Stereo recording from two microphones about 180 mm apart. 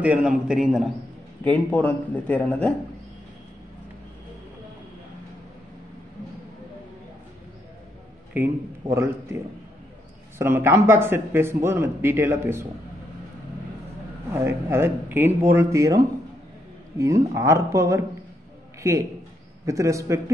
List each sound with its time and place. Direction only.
0.0 s a man's voice: 5° right (ahead or behind)
1.4 s a man's voice: 10° left (ahead or behind)
8.3 s speech: 10° right (ahead or behind)
10.4 s speech: 15° right (ahead or behind)
14.3 s speech: 15° right (ahead or behind)
17.0 s a man's voice: 20° right (ahead or behind)